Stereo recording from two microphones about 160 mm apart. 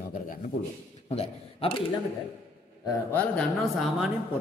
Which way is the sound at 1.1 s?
35° left (ahead or behind).